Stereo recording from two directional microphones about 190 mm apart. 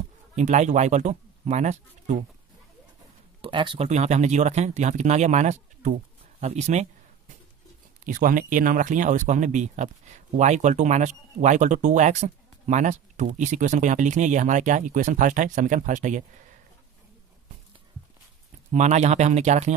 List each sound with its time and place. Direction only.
0.4 s speech: 40° right (ahead or behind)
3.3 s speech: 25° right (ahead or behind)
8.0 s speech: 45° right (ahead or behind)
18.7 s speech: 40° right (ahead or behind)